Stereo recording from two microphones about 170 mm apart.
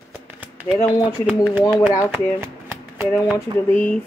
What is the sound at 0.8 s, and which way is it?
Speech, 20° left (ahead or behind).